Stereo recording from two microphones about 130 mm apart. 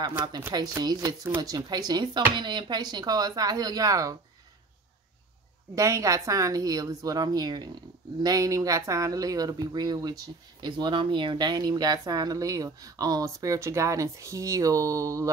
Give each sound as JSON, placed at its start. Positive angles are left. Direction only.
{"t": 0.7, "sound": "speech", "side_deg": -25}
{"t": 5.8, "sound": "speech", "side_deg": -25}